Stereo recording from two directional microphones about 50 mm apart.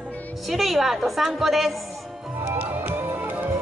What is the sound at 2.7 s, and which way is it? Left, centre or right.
Music, right.